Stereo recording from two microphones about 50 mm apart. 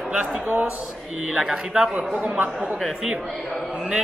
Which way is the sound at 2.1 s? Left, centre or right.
Right.